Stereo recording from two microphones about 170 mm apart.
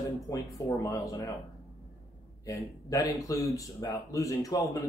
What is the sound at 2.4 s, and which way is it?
Speech, 20° left (ahead or behind).